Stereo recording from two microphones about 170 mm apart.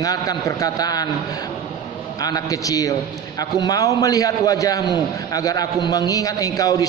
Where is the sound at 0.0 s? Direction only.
20° left (ahead or behind).